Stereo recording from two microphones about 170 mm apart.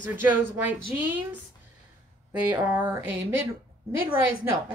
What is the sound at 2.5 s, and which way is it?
Speech, 15° right (ahead or behind).